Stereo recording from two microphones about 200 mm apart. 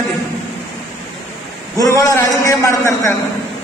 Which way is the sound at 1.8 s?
15° left (ahead or behind).